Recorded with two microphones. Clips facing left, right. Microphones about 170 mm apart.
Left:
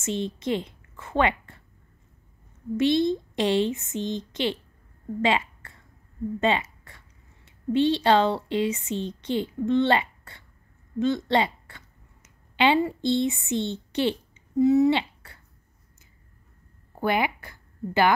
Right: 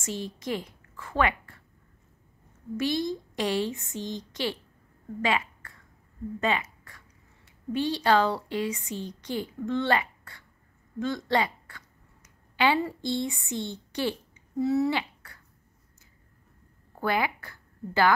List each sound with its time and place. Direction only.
0.0 s a woman's voice: 25° left (ahead or behind)
2.8 s a woman's voice: 25° left (ahead or behind)
6.4 s a sound: 25° left (ahead or behind)
7.4 s speech: 25° left (ahead or behind)
16.9 s a woman's voice: 20° left (ahead or behind)